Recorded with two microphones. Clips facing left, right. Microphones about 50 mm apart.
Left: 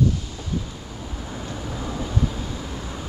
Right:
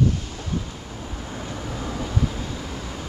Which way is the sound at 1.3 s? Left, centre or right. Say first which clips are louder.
Even; centre.